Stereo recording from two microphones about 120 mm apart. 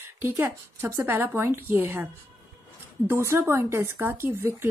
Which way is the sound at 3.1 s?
20° right (ahead or behind).